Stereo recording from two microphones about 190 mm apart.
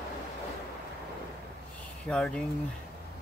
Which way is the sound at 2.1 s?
5° left (ahead or behind).